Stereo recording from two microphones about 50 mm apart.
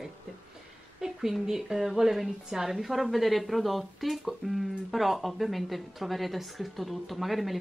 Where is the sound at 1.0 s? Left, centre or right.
Centre.